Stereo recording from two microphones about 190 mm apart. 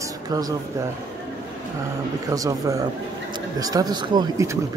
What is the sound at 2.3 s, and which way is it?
Speech, 20° right (ahead or behind).